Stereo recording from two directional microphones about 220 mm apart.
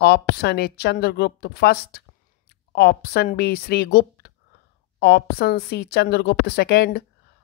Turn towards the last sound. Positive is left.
turn(degrees=50)  # may be behind; listen again after turning